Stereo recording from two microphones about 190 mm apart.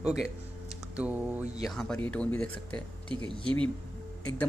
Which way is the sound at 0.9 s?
5° right (ahead or behind).